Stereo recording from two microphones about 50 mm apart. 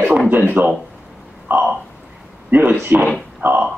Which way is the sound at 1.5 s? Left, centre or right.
Right.